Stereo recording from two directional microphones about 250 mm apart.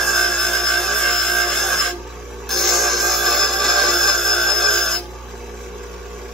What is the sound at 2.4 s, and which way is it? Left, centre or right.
Music, centre.